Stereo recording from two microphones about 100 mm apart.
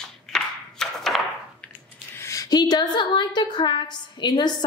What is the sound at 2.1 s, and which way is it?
A woman's voice, 30° left (ahead or behind).